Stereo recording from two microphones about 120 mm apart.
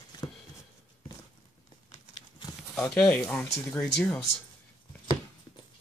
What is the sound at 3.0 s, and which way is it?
Speech, 5° left (ahead or behind).